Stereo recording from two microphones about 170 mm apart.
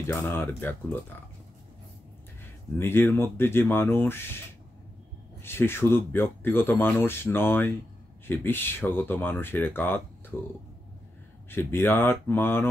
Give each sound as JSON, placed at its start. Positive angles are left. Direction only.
{"t": 0.0, "sound": "speech", "side_deg": 15}
{"t": 2.8, "sound": "speech", "side_deg": 15}
{"t": 5.4, "sound": "speech", "side_deg": 15}
{"t": 11.5, "sound": "speech", "side_deg": 15}